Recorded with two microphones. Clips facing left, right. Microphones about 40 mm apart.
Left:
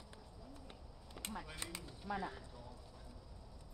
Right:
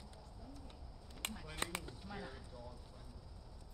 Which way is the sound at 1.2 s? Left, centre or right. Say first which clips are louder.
Even; right.